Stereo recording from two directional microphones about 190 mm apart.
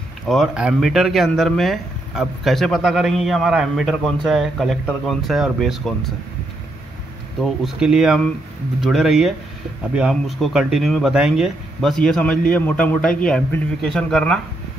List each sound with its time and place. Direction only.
0.3 s speech: 5° right (ahead or behind)
7.4 s a man's voice: centre (ahead or behind)